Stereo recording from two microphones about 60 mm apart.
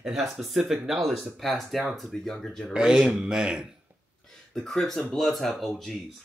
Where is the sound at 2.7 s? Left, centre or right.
Centre.